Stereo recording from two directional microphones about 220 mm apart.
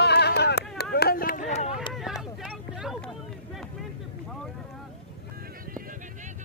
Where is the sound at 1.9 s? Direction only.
Centre (ahead or behind).